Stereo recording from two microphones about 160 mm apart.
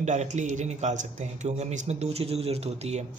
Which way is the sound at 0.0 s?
45° right (ahead or behind).